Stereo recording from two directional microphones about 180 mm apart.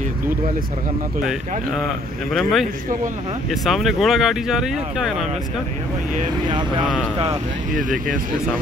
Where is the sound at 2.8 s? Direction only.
45° right (ahead or behind).